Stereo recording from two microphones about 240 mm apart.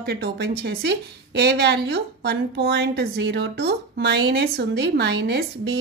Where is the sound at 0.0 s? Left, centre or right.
Right.